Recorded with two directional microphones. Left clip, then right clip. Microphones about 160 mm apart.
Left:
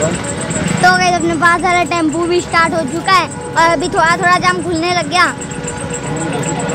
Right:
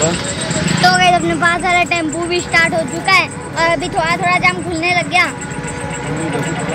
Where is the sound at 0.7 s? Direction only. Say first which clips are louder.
Even; 20° left (ahead or behind).